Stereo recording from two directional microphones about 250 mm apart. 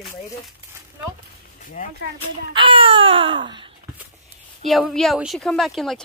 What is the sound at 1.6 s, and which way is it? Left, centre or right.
Speech, left.